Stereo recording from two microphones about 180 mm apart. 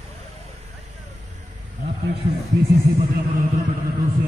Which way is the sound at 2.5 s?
65° right (ahead or behind).